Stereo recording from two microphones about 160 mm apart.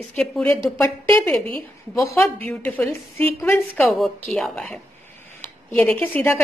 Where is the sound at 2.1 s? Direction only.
10° left (ahead or behind).